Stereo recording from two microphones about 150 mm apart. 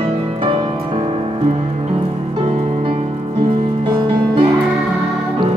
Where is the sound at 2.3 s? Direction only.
35° right (ahead or behind).